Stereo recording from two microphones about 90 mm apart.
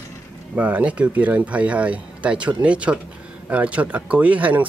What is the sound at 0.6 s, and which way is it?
Speech, 15° right (ahead or behind).